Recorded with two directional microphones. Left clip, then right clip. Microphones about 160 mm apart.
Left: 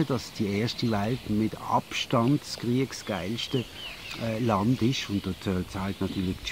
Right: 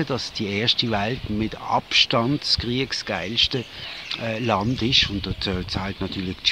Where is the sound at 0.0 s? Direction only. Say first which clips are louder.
Right 4 dB; 20° right (ahead or behind).